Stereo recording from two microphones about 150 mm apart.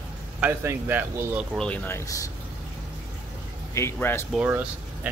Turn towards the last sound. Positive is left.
turn(degrees=-10)  # may be behind; listen again after turning